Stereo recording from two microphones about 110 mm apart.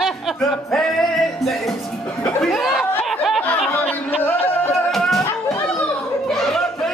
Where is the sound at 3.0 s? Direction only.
Centre (ahead or behind).